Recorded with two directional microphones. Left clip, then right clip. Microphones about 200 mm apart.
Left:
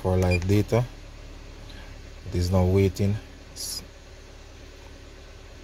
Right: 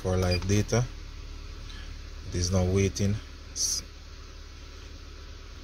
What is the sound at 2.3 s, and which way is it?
Speech, 30° left (ahead or behind).